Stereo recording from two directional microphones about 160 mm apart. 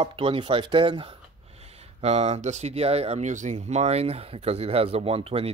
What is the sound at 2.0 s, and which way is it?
Speech, 40° right (ahead or behind).